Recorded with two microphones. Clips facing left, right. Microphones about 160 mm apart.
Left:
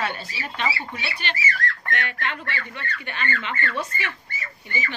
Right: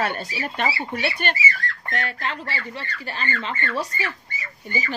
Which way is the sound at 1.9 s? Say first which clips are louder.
Right 3 dB; 35° right (ahead or behind).